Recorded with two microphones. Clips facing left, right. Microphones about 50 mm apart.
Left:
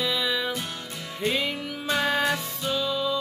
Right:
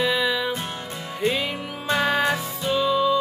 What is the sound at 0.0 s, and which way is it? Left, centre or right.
Music, centre.